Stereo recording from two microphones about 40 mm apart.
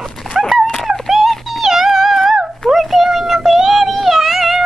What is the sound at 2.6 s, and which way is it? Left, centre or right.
Child singing, centre.